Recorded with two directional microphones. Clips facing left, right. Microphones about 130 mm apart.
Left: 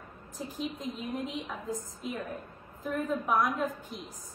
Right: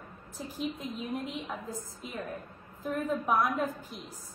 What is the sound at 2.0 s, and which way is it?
A woman's voice, centre (ahead or behind).